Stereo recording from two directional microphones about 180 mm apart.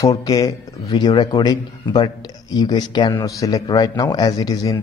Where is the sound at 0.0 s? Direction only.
20° left (ahead or behind).